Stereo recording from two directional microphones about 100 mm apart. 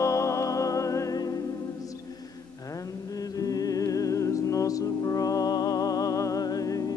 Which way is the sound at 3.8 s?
35° left (ahead or behind).